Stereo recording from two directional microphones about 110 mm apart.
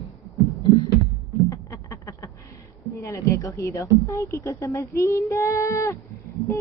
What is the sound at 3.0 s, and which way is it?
A woman's voice, 30° left (ahead or behind).